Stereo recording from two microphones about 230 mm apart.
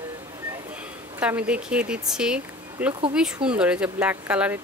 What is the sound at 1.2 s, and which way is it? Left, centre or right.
A woman's voice, centre.